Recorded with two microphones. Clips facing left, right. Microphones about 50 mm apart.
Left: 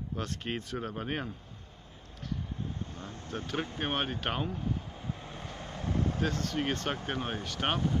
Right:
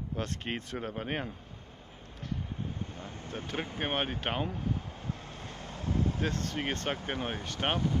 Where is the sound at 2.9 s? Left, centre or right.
Centre.